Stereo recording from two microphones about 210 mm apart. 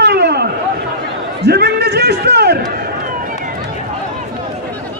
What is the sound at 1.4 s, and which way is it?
A man's voice, 50° right (ahead or behind).